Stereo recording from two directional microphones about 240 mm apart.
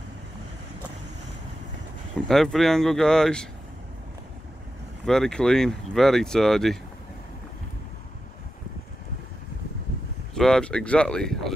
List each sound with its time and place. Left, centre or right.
2.2 s speech: centre
5.0 s speech: centre
10.3 s speech: centre